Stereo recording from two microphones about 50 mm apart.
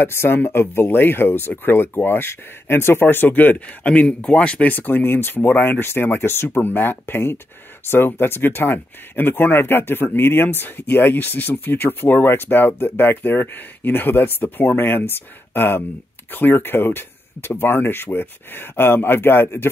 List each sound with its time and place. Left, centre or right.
0.0 s speech: left
4.7 s speech: left